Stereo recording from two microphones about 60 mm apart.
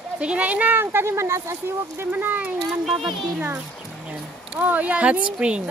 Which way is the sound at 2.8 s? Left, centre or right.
Centre.